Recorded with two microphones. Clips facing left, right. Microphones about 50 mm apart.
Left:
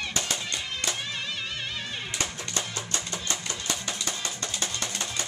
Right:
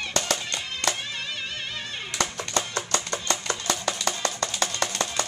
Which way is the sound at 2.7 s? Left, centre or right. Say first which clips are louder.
Right 5 dB; right.